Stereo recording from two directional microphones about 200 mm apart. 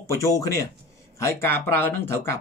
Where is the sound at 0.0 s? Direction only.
15° left (ahead or behind).